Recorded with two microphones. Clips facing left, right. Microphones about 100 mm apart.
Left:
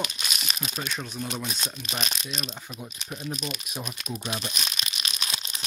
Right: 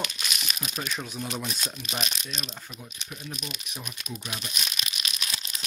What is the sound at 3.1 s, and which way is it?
Speech, 30° left (ahead or behind).